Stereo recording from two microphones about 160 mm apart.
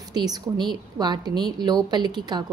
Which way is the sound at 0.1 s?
25° right (ahead or behind).